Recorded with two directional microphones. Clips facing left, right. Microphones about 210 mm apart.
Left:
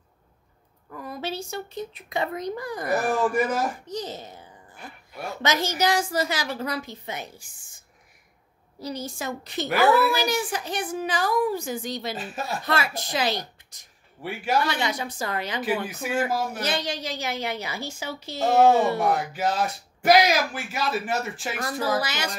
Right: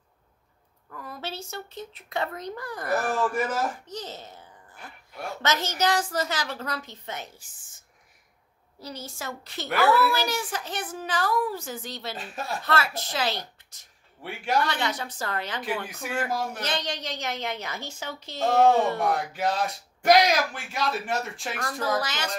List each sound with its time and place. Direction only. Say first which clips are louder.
0.8 s speech: left 5 dB; 15° left (ahead or behind)
8.8 s speech: left 5 dB; 15° left (ahead or behind)
12.2 s speech: left 2 dB; 5° left (ahead or behind)
12.6 s speech: right 1 dB; 15° left (ahead or behind)
14.2 s speech: left 2 dB; 5° left (ahead or behind)